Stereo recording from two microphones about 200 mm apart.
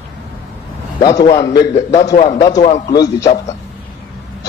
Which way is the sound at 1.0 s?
20° left (ahead or behind).